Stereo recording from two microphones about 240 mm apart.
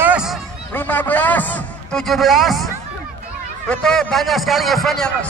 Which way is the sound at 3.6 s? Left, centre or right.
Centre.